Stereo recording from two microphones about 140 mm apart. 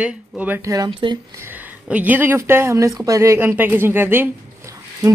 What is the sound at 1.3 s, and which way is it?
Speech, 15° right (ahead or behind).